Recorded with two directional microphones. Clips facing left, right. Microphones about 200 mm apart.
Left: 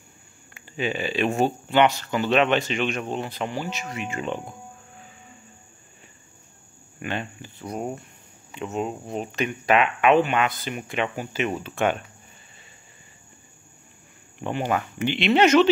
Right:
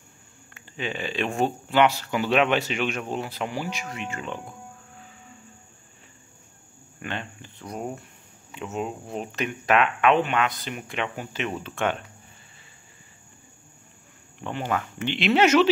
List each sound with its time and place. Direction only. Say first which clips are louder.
0.6 s speech: left 4 dB; 10° left (ahead or behind); by 3.8 s 10° right (ahead or behind)
3.8 s speech: left 2 dB; 5° left (ahead or behind)
4.1 s speech: left 8 dB; 20° left (ahead or behind)
7.0 s speech: left 4 dB; 10° left (ahead or behind)
14.4 s speech: left 3 dB; 15° left (ahead or behind)
15.1 s speech: left 2 dB; centre (ahead or behind)